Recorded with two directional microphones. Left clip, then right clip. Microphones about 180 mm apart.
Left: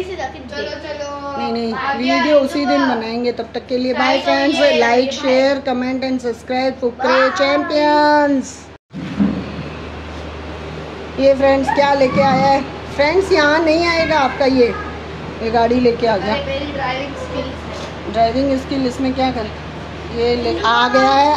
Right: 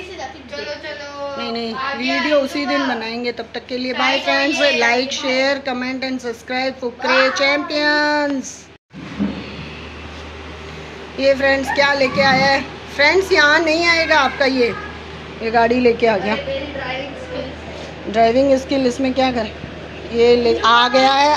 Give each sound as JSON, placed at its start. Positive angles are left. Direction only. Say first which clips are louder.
{"t": 1.4, "sound": "a woman's voice", "louder": "left 4 dB", "side_deg": 5}
{"t": 11.1, "sound": "a woman's voice", "louder": "left 3 dB", "side_deg": 5}
{"t": 16.0, "sound": "a woman's voice", "louder": "even", "side_deg": -20}
{"t": 18.1, "sound": "a woman's voice", "louder": "right 2 dB", "side_deg": -25}